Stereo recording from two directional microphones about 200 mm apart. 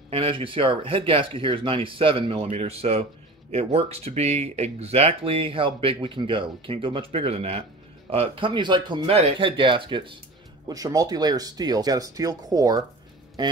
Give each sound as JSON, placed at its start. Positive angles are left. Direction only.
{"t": 0.1, "sound": "speech", "side_deg": -25}